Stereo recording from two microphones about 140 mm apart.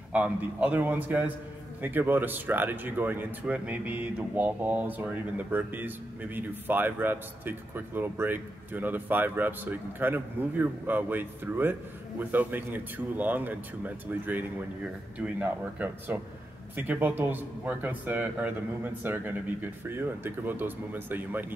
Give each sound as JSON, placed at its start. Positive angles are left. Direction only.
{"t": 0.1, "sound": "speech", "side_deg": -10}
{"t": 15.8, "sound": "speech", "side_deg": -10}